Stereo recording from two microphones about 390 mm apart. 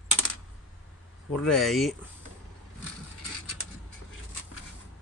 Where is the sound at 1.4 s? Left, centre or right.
Centre.